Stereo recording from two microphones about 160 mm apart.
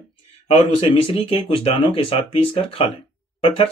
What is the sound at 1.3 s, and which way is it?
Speech, 35° left (ahead or behind).